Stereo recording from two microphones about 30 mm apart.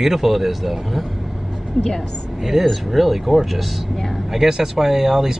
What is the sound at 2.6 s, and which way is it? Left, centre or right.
Speech, centre.